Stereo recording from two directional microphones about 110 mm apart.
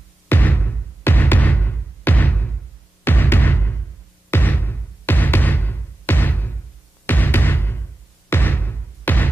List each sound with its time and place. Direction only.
0.3 s music: 15° left (ahead or behind)